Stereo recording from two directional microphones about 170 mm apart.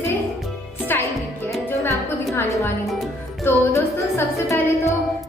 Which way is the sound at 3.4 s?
15° left (ahead or behind).